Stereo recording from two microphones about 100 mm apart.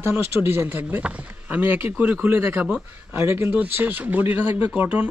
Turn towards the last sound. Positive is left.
turn(degrees=-15)  # may be behind; listen again after turning